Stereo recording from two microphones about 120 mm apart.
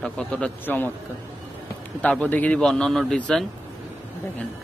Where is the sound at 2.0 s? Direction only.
10° left (ahead or behind).